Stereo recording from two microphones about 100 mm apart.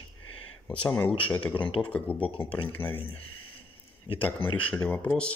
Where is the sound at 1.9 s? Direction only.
15° left (ahead or behind).